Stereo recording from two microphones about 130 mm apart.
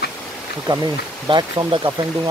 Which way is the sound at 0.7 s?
35° right (ahead or behind).